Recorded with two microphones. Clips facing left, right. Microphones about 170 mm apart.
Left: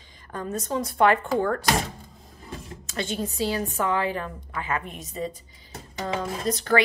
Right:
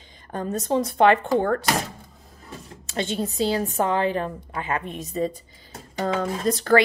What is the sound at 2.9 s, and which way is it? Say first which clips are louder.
Speech: right 3 dB; 25° right (ahead or behind).